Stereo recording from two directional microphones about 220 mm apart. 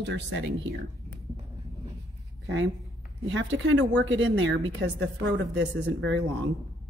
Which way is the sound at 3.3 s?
55° right (ahead or behind).